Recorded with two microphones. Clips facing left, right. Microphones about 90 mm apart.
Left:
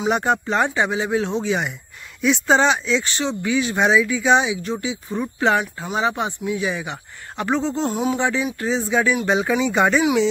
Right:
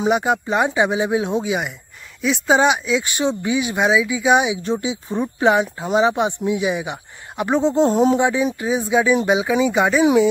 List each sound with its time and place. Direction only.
0.1 s speech: 5° right (ahead or behind)